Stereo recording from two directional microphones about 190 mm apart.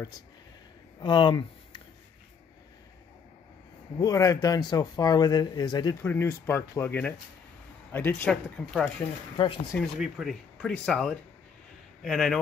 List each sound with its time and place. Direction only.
0.9 s speech: 25° left (ahead or behind)
4.0 s speech: 15° left (ahead or behind)
9.4 s speech: 25° left (ahead or behind)
9.8 s speech: 5° right (ahead or behind)